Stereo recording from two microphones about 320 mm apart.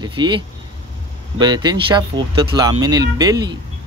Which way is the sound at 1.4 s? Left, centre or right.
Centre.